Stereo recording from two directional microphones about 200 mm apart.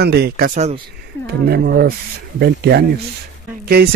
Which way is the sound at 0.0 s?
55° right (ahead or behind).